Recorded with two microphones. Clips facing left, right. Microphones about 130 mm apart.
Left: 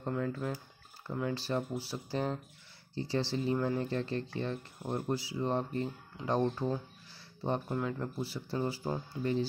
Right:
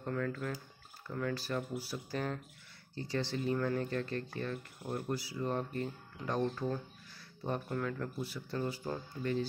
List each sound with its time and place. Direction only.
0.0 s speech: 20° left (ahead or behind)